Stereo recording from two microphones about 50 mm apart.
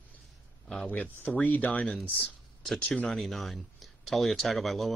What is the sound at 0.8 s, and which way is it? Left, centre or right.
Speech, left.